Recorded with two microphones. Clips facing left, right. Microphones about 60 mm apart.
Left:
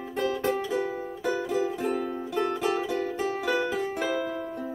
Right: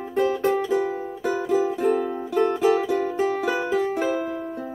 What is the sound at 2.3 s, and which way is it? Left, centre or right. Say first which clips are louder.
Music: right 8 dB; centre.